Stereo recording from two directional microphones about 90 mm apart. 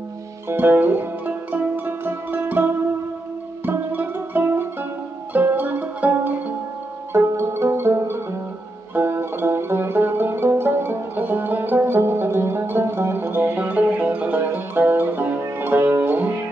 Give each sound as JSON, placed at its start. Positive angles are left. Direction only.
{"t": 0.5, "sound": "music", "side_deg": -20}
{"t": 7.1, "sound": "music", "side_deg": -30}